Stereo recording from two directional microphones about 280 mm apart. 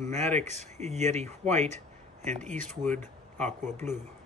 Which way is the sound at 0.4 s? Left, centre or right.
Right.